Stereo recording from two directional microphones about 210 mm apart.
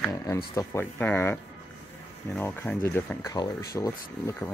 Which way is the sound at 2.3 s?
10° left (ahead or behind).